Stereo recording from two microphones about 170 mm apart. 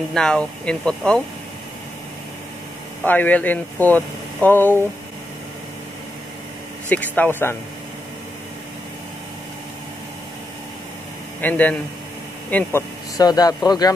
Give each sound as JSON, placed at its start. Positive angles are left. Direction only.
{"t": 0.1, "sound": "speech", "side_deg": 5}
{"t": 3.0, "sound": "speech", "side_deg": 10}
{"t": 6.9, "sound": "speech", "side_deg": 10}
{"t": 11.4, "sound": "speech", "side_deg": 10}
{"t": 13.2, "sound": "a man's voice", "side_deg": 25}